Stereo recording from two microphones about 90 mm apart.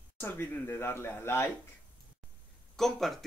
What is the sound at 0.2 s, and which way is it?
Speech, 25° left (ahead or behind).